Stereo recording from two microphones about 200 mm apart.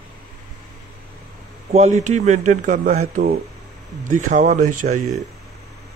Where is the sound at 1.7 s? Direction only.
35° right (ahead or behind).